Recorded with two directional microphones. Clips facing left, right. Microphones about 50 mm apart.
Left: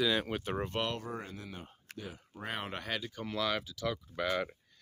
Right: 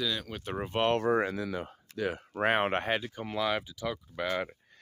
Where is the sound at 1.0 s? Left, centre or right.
Right.